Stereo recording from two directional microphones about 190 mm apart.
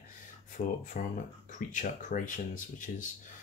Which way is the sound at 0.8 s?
45° left (ahead or behind).